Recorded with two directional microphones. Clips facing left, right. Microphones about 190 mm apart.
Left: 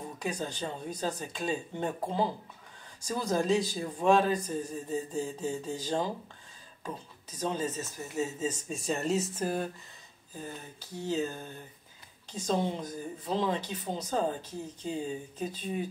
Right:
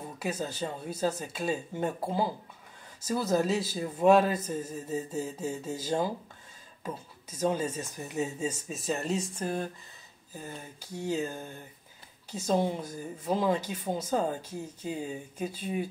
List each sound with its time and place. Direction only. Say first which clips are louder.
0.2 s speech: right 2 dB; 5° right (ahead or behind)
10.3 s speech: even; 10° right (ahead or behind)